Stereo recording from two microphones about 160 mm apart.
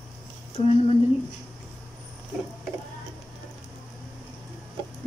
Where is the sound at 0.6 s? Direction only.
40° left (ahead or behind).